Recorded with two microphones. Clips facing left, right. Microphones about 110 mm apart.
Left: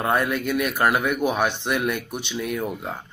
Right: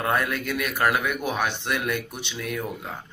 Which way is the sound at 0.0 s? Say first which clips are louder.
Left 3 dB; 25° left (ahead or behind).